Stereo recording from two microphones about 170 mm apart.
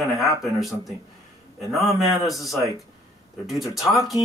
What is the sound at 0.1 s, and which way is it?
Speech, centre (ahead or behind).